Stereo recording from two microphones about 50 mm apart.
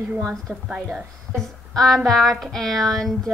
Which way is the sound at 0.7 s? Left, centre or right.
Centre.